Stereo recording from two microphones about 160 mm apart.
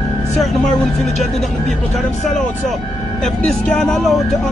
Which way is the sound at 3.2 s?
5° left (ahead or behind).